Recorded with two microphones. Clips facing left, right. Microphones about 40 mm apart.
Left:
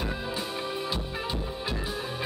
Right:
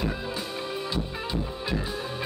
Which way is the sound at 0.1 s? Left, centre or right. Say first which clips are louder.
Even; centre.